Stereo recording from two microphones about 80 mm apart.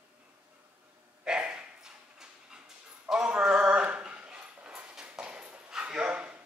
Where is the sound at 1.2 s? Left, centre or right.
Centre.